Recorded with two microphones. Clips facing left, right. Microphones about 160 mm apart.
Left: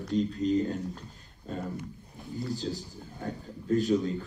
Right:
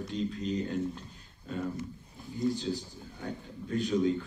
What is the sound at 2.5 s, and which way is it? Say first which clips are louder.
A man's voice: even; 40° left (ahead or behind).